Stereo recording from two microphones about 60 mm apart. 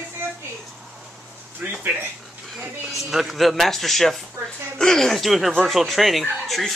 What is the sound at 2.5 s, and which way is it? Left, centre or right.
Speech, centre.